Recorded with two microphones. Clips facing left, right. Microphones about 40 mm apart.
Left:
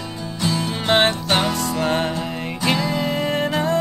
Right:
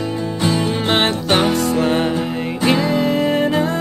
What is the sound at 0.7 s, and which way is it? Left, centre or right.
Music, centre.